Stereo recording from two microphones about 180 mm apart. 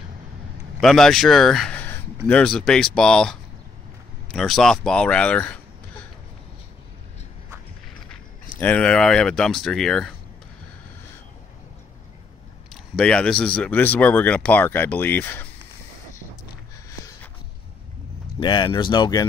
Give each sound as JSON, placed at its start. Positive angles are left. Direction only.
{"t": 0.7, "sound": "speech", "side_deg": 0}
{"t": 8.5, "sound": "speech", "side_deg": 10}
{"t": 12.7, "sound": "speech", "side_deg": 5}
{"t": 18.4, "sound": "speech", "side_deg": 25}